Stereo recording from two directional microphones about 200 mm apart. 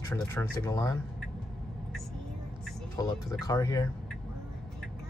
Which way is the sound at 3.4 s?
15° left (ahead or behind).